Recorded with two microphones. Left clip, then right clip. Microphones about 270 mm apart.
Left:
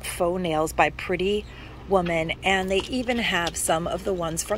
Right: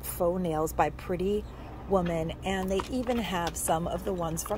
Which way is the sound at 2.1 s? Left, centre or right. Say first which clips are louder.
Left 9 dB; centre.